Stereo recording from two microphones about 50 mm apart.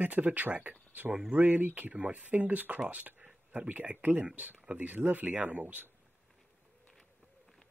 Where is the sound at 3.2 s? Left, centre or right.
Right.